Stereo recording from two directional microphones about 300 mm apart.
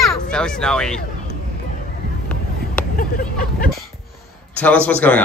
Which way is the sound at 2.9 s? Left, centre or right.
Left.